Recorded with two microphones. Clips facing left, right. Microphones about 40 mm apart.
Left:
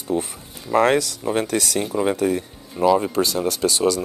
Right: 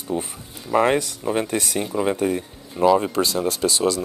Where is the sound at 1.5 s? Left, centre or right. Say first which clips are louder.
Left 2 dB; right.